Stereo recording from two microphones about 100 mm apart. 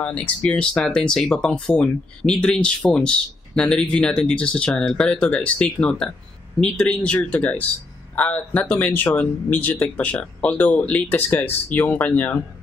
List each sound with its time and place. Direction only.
0.0 s speech: 15° left (ahead or behind)